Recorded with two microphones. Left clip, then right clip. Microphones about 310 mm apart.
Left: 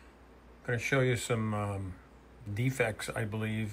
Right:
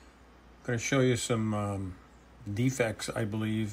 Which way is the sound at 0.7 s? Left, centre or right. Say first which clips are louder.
Right 2 dB; centre.